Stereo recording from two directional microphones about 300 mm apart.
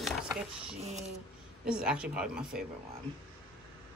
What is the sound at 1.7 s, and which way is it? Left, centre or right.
Speech, centre.